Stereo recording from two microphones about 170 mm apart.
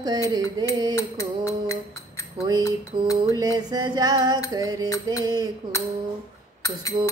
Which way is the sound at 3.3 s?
20° right (ahead or behind).